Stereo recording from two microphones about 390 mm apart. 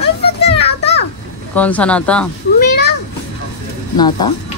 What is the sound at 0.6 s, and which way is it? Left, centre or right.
Children playing, centre.